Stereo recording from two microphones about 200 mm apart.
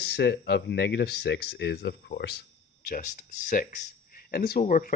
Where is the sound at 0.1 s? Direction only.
55° left (ahead or behind).